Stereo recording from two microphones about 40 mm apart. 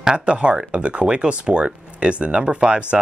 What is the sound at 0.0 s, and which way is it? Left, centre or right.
Speech, right.